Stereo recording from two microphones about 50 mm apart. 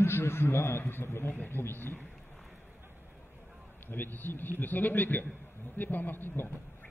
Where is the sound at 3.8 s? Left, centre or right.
Left.